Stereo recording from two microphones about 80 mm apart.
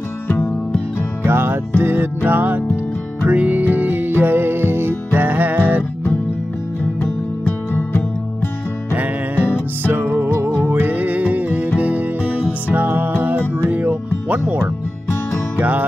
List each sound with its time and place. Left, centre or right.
1.2 s music: right
7.0 s music: left
8.9 s music: right